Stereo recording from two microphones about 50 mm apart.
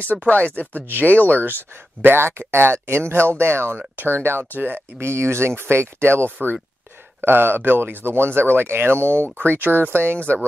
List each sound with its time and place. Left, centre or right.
0.3 s speech: left
1.4 s speech: right